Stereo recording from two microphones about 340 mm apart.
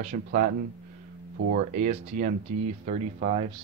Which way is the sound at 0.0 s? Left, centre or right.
Right.